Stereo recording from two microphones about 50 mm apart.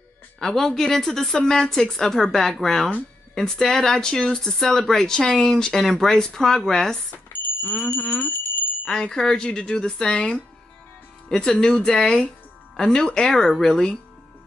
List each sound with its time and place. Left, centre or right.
0.4 s speech: centre
7.3 s speech: left
9.0 s speech: centre